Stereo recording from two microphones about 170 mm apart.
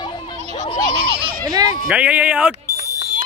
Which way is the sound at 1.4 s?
20° right (ahead or behind).